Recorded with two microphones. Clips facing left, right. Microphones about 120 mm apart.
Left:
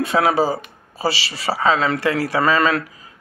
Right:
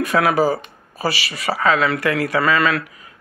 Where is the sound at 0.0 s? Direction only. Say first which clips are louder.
Right 1 dB; 25° left (ahead or behind).